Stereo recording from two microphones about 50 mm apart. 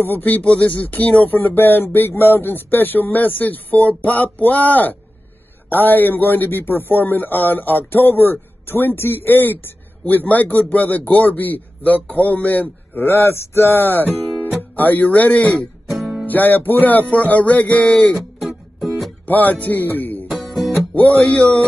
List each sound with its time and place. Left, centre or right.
0.0 s speech: left
13.0 s speech: left
16.3 s speech: left
17.1 s music: left
18.1 s music: centre
19.2 s a man's voice: left
20.2 s music: centre
21.2 s music: left